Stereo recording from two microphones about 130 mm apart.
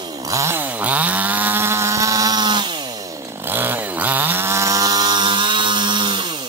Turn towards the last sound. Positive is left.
turn(degrees=-35)  # may be behind; listen again after turning